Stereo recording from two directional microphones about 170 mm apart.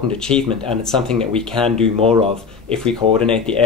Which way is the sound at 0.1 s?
5° left (ahead or behind).